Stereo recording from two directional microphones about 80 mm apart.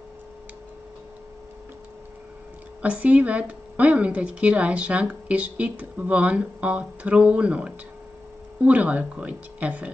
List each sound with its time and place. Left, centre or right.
2.8 s a woman's voice: centre